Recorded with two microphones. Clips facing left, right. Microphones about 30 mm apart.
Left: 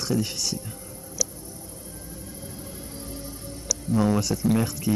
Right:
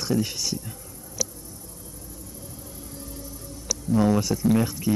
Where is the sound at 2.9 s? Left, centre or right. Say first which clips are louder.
Even; left.